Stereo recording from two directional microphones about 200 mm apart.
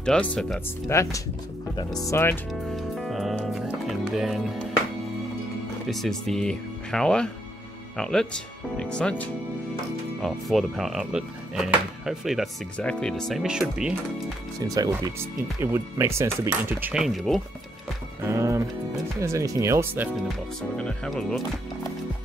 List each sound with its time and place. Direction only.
0.0 s speech: 5° left (ahead or behind)
2.7 s music: centre (ahead or behind)
5.9 s speech: centre (ahead or behind)
14.6 s speech: 20° right (ahead or behind); by 17.4 s centre (ahead or behind)
18.2 s speech: 15° right (ahead or behind)
20.7 s speech: 5° left (ahead or behind)